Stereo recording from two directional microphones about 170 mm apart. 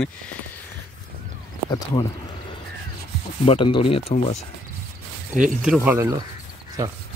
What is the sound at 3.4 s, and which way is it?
Speech, 35° left (ahead or behind).